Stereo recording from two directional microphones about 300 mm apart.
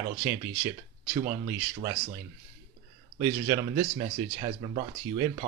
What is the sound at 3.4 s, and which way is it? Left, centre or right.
Speech, centre.